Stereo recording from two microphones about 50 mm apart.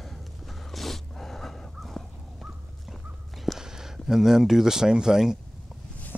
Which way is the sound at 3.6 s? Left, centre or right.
Centre.